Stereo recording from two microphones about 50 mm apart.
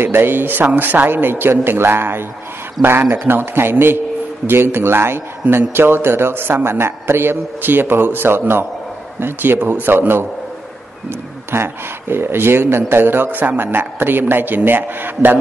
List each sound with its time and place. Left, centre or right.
0.0 s a man's voice: right
11.5 s a man's voice: right